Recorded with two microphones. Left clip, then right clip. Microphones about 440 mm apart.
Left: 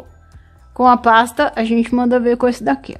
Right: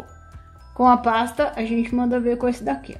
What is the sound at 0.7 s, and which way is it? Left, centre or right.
A woman's voice, centre.